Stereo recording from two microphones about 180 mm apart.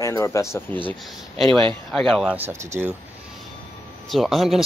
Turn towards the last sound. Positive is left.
turn(degrees=0)  # may be behind; listen again after turning